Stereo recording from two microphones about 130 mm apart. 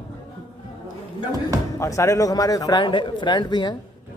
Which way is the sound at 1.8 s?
25° left (ahead or behind).